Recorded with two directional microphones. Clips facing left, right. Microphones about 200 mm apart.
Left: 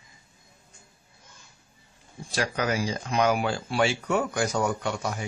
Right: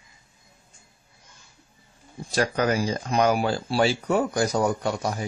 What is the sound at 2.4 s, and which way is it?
Speech, 40° right (ahead or behind).